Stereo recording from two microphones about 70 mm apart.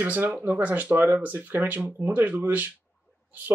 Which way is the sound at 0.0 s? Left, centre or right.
Right.